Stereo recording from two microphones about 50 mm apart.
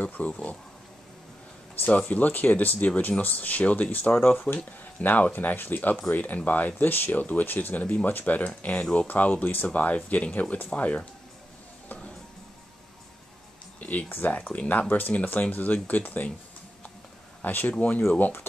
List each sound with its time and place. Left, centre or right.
0.0 s speech: left
1.9 s speech: left
5.0 s speech: left
13.7 s speech: left
14.3 s speech: left
17.4 s speech: left